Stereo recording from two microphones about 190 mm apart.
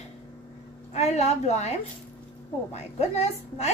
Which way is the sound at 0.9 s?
35° left (ahead or behind).